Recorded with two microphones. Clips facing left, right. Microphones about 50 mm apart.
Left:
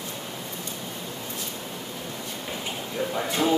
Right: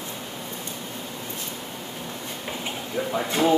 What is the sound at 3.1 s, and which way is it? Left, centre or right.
Speech, centre.